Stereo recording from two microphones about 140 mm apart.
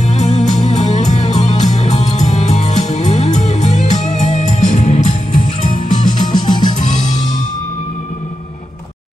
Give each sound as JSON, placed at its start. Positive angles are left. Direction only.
{"t": 0.0, "sound": "music", "side_deg": 55}
{"t": 6.5, "sound": "music", "side_deg": 30}